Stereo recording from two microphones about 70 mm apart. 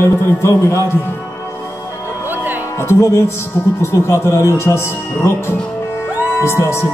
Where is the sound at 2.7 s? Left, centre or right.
Left.